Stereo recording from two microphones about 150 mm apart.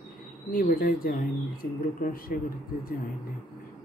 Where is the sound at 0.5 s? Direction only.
70° left (ahead or behind).